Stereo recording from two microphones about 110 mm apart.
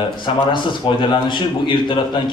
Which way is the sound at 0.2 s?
45° left (ahead or behind).